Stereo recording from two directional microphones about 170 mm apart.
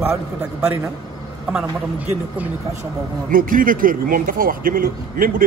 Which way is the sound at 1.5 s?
10° right (ahead or behind).